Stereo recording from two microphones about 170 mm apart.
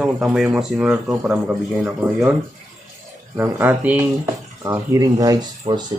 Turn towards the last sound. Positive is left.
turn(degrees=-35)  # may be behind; listen again after turning